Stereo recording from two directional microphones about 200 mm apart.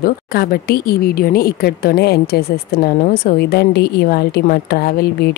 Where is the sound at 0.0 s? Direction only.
50° left (ahead or behind).